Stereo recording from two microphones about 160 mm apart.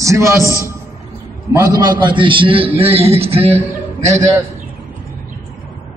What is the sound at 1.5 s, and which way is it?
A man's voice, 20° right (ahead or behind).